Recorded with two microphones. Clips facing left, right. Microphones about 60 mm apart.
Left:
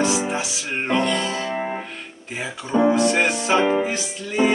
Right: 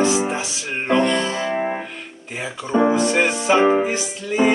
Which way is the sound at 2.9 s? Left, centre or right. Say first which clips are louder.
Right 1 dB; centre.